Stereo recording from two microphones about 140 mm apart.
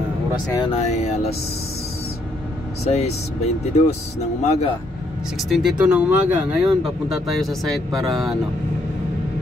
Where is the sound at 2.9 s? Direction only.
50° left (ahead or behind).